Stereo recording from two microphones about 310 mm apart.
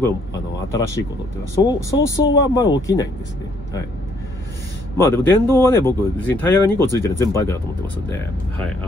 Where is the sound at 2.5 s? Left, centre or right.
Centre.